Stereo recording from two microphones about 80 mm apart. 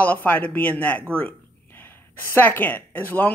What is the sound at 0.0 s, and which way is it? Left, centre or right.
Speech, left.